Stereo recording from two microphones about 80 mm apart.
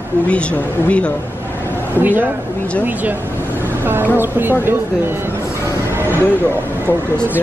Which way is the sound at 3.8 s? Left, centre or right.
Right.